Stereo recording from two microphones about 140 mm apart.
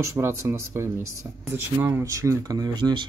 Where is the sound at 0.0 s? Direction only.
20° right (ahead or behind).